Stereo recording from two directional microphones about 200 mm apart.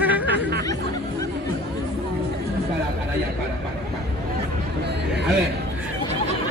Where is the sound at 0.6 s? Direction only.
15° left (ahead or behind).